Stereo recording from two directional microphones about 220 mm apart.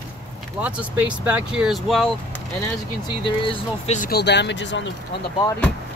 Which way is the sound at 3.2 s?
25° left (ahead or behind).